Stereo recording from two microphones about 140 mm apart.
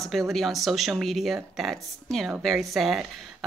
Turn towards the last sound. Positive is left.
turn(degrees=0)  # may be behind; listen again after turning